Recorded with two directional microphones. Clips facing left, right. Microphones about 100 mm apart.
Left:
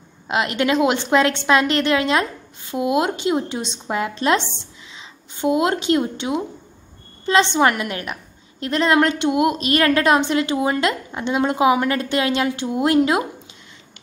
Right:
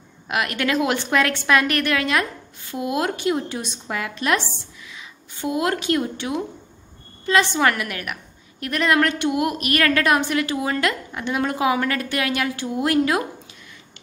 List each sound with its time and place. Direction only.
0.3 s a woman's voice: 25° left (ahead or behind)